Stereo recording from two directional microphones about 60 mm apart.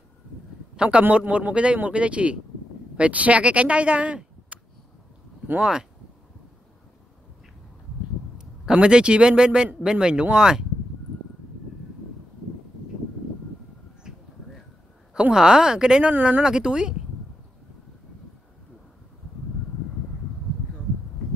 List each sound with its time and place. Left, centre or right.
0.7 s a man's voice: centre
5.6 s speech: centre
8.4 s speech: centre
14.0 s a sound: centre
15.1 s speech: centre
16.4 s speech: centre